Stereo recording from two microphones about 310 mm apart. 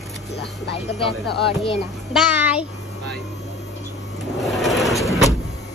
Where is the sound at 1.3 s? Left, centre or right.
Centre.